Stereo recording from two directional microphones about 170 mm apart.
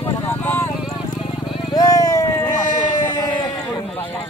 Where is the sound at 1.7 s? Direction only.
20° left (ahead or behind).